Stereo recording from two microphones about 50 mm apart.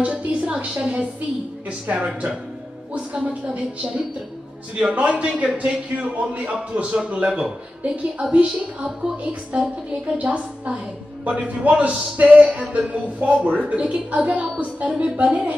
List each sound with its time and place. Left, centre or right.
0.0 s a woman's voice: right